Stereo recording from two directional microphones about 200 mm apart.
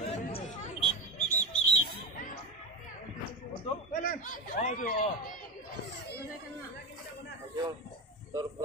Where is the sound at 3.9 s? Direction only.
45° left (ahead or behind).